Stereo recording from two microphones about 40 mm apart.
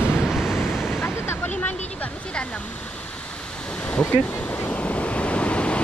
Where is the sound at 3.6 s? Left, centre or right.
Left.